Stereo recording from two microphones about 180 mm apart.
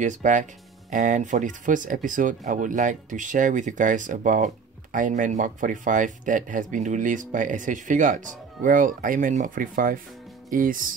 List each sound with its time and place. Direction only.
0.0 s speech: 45° right (ahead or behind)